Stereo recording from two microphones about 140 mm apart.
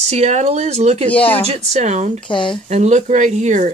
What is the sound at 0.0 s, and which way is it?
Speech, 50° right (ahead or behind).